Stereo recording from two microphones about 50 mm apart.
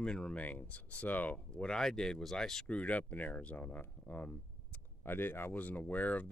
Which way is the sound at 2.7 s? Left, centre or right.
Left.